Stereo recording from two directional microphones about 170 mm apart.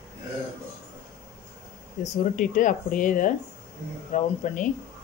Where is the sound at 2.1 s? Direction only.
50° left (ahead or behind).